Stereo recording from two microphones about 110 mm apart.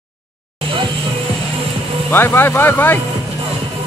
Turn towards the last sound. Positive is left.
turn(degrees=20)  # may be behind; listen again after turning